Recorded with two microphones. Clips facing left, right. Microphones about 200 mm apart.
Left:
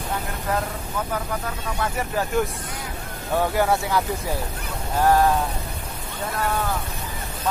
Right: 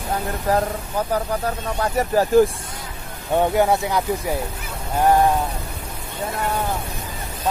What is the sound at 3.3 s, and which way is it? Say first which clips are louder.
Speech: right 3 dB; 20° right (ahead or behind).